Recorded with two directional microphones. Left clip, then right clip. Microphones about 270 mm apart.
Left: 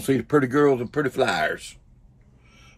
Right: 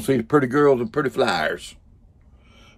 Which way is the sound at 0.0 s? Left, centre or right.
Centre.